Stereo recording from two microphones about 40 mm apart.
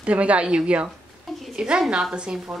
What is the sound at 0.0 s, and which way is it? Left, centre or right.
A woman's voice, right.